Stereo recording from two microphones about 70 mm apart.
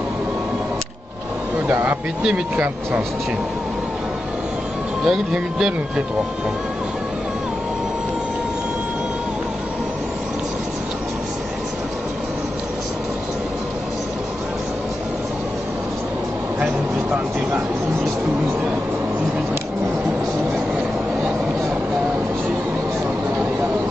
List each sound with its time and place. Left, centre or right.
1.7 s speech: right
5.0 s speech: centre